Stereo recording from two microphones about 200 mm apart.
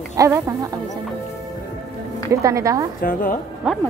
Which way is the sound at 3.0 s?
45° left (ahead or behind).